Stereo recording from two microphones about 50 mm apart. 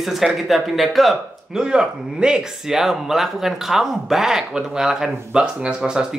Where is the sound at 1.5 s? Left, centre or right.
Centre.